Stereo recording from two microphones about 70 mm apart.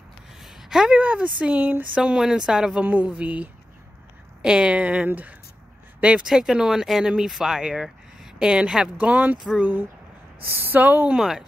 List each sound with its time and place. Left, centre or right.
0.4 s a sound: centre
0.9 s speech: centre
2.0 s speech: centre
2.8 s speech: right
9.1 s speech: right
11.1 s speech: centre